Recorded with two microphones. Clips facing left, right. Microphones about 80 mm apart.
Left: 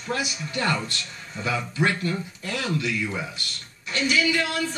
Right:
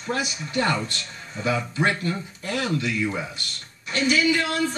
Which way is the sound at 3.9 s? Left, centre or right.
Right.